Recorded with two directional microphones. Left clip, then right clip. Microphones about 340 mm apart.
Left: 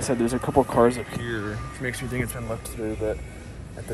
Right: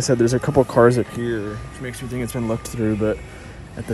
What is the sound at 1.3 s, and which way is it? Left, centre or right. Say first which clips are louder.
Speech: right 4 dB; centre.